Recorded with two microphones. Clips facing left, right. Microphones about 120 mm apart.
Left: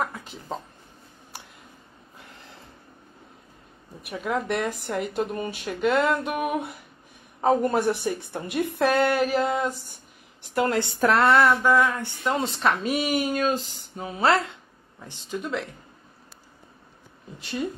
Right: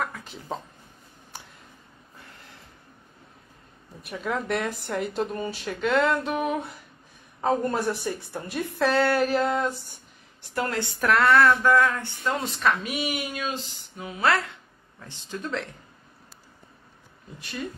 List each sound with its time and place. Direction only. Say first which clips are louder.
4.3 s a woman's voice: left 1 dB; centre (ahead or behind)
5.1 s a man's voice: left 1 dB; 10° left (ahead or behind)
10.5 s a man's voice: left 5 dB; 20° left (ahead or behind)
11.3 s speech: even; 15° left (ahead or behind)
12.4 s speech: left 1 dB; 30° left (ahead or behind); by 15.6 s 15° left (ahead or behind)
17.4 s a man's voice: left 5 dB; 25° left (ahead or behind)